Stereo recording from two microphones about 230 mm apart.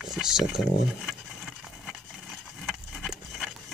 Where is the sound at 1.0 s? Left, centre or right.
Centre.